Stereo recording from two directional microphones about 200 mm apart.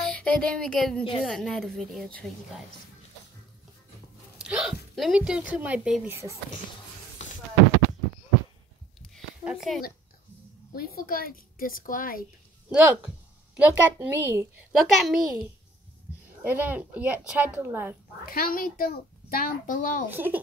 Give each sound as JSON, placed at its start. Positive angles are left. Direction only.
{"t": 0.0, "sound": "a sound", "side_deg": 5}
{"t": 1.2, "sound": "a woman's voice", "side_deg": 0}
{"t": 4.4, "sound": "speech", "side_deg": -5}
{"t": 9.1, "sound": "a sound", "side_deg": -5}
{"t": 11.0, "sound": "a child's voice", "side_deg": 45}
{"t": 12.6, "sound": "a woman's voice", "side_deg": -5}
{"t": 14.8, "sound": "a woman's voice", "side_deg": 0}
{"t": 18.2, "sound": "a child's voice", "side_deg": 45}
{"t": 20.1, "sound": "a woman's voice", "side_deg": -10}